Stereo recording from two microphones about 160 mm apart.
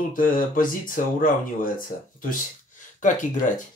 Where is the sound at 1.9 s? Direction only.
60° left (ahead or behind).